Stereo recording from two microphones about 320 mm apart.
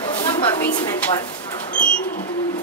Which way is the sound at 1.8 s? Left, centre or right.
Left.